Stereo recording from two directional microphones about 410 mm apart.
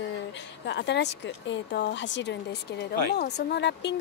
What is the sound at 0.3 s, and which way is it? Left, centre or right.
Speech, left.